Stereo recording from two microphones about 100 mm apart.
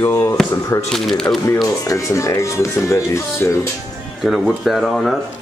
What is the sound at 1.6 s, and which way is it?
Speech, 35° left (ahead or behind).